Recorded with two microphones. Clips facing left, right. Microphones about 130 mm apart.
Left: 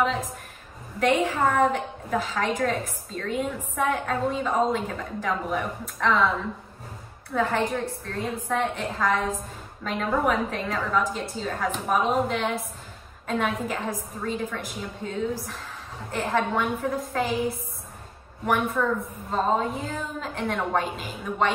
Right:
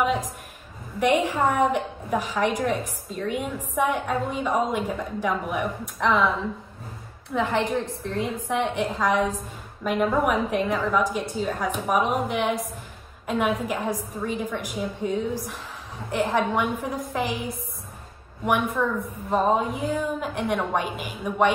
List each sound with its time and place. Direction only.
0.0 s a woman's voice: 15° right (ahead or behind)
7.3 s a woman's voice: 20° right (ahead or behind)
18.8 s a woman's voice: 10° right (ahead or behind)